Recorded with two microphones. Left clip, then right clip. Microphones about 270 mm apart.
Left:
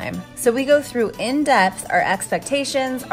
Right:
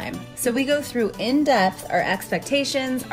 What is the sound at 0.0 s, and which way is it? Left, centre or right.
Speech, left.